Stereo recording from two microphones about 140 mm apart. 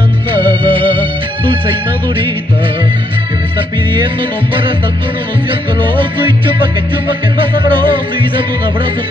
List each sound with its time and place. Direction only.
0.4 s music: 35° right (ahead or behind)